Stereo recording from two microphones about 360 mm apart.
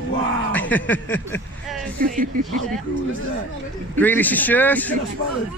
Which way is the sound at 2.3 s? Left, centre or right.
Right.